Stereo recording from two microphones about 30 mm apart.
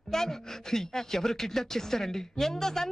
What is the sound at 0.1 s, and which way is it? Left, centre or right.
Speech, centre.